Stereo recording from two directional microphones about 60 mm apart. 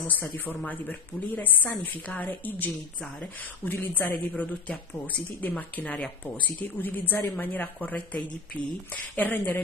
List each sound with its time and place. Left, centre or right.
0.0 s speech: left